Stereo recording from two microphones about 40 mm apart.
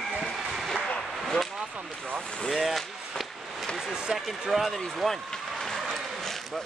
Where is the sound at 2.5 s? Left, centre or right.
Centre.